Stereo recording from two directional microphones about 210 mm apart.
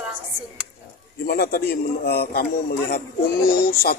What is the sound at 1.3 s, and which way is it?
A man's voice, 45° left (ahead or behind).